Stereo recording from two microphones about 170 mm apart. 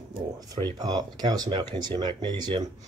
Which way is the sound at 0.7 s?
25° right (ahead or behind).